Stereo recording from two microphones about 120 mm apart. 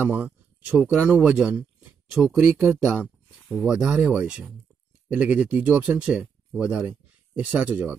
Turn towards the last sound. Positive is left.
turn(degrees=-10)  # may be behind; listen again after turning